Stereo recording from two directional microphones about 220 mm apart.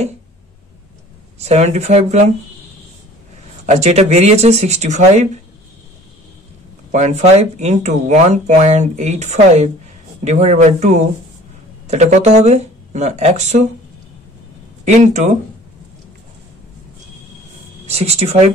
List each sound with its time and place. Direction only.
1.4 s speech: 30° right (ahead or behind)
3.6 s speech: 30° right (ahead or behind)
6.9 s speech: 30° right (ahead or behind)
14.9 s speech: 30° right (ahead or behind)
17.8 s speech: 30° right (ahead or behind)